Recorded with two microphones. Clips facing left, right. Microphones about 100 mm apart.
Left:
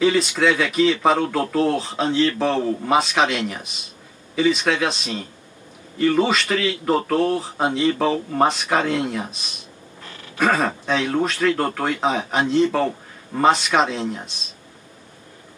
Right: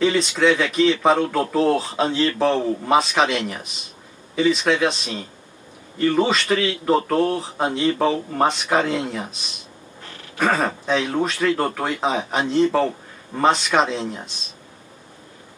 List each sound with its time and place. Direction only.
0.0 s speech: centre (ahead or behind)
1.6 s speech: 25° right (ahead or behind)
2.3 s speech: centre (ahead or behind)
10.4 s speech: centre (ahead or behind)